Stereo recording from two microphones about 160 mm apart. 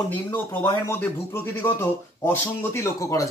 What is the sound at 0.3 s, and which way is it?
Speech, 15° left (ahead or behind).